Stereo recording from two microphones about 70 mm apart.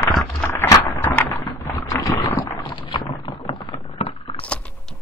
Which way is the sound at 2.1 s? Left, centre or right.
Left.